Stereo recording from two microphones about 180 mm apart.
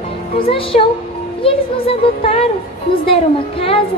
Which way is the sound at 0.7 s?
40° left (ahead or behind).